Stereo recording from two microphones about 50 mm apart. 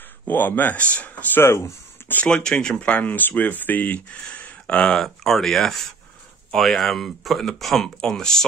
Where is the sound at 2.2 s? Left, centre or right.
Centre.